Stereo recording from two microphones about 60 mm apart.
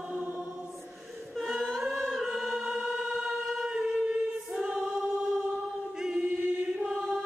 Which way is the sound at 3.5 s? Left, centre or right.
Centre.